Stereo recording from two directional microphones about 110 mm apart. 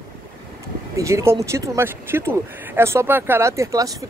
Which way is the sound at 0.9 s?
25° right (ahead or behind).